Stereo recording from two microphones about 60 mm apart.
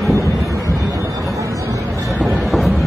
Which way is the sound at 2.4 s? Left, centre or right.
Centre.